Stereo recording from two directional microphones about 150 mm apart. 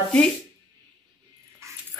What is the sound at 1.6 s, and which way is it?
Dog, 20° right (ahead or behind).